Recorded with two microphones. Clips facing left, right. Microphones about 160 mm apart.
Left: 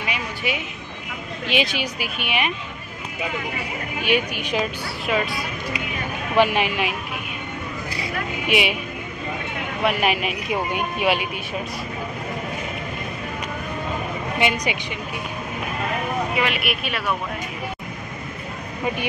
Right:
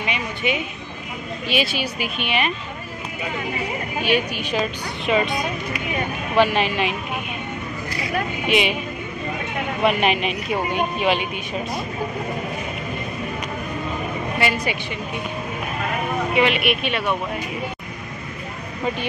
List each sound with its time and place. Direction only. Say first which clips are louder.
0.0 s a sound: right 3 dB; 5° left (ahead or behind)
1.5 s speech: even; 15° left (ahead or behind)
4.0 s speech: even; 15° left (ahead or behind)
6.3 s speech: right 1 dB; 15° left (ahead or behind)
8.5 s speech: right 1 dB; 10° left (ahead or behind)
9.8 s speech: right 2 dB; 5° left (ahead or behind)
14.4 s speech: left 1 dB; 15° left (ahead or behind)
16.3 s speech: right 5 dB; centre (ahead or behind)